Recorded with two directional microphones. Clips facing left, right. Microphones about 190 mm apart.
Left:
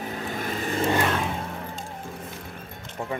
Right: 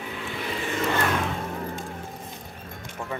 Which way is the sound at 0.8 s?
25° left (ahead or behind).